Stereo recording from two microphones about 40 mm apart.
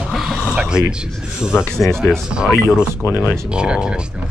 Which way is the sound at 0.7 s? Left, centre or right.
Right.